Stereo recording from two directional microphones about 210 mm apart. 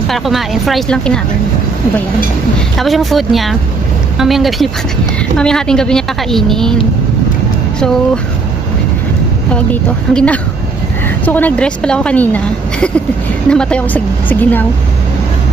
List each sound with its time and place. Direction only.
0.1 s a woman's voice: centre (ahead or behind)
2.8 s a woman's voice: centre (ahead or behind)
9.5 s a woman's voice: 5° left (ahead or behind)
13.5 s a woman's voice: 5° left (ahead or behind)